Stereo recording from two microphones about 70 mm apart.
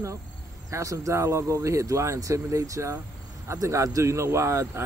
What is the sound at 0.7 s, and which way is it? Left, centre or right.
Speech, right.